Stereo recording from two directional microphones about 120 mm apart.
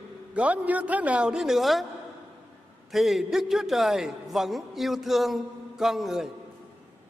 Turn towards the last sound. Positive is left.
turn(degrees=-5)  # may be behind; listen again after turning